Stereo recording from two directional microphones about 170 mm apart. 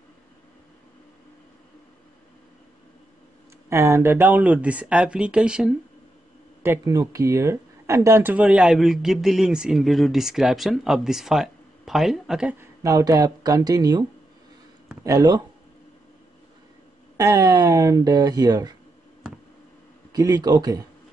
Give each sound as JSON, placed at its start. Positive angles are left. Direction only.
{"t": 3.6, "sound": "speech", "side_deg": -15}
{"t": 6.6, "sound": "speech", "side_deg": -15}
{"t": 15.0, "sound": "speech", "side_deg": -20}
{"t": 17.2, "sound": "speech", "side_deg": -20}
{"t": 20.1, "sound": "speech", "side_deg": -20}